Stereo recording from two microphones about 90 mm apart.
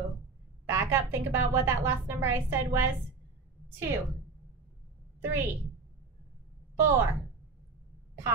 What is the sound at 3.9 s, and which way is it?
Speech, 30° right (ahead or behind).